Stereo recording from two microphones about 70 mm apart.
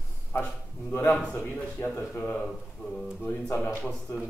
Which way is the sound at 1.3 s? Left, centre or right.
Left.